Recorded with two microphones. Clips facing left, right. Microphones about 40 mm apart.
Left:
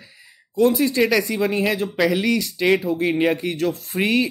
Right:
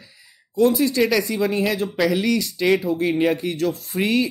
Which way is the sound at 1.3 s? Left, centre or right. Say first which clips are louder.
Even; left.